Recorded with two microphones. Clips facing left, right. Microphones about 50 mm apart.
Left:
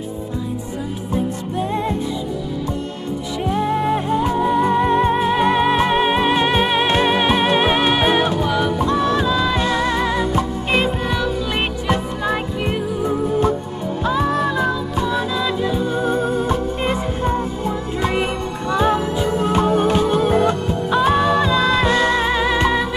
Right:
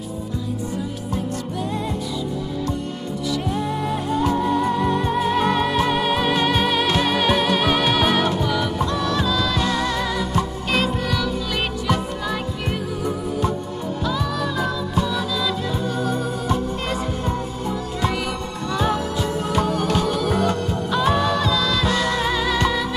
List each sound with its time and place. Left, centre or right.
3.4 s music: left
14.0 s music: left
18.7 s music: left